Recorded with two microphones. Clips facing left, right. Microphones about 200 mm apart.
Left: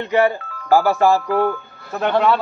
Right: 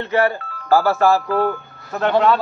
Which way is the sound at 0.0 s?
15° left (ahead or behind).